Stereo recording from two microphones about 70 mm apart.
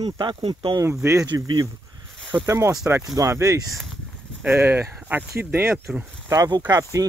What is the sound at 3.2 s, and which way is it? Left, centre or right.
Speech, right.